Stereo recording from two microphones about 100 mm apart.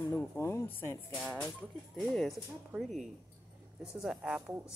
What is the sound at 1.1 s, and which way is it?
Speech, 5° left (ahead or behind).